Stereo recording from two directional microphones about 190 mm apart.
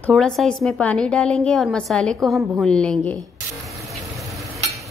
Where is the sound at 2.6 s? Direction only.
5° left (ahead or behind).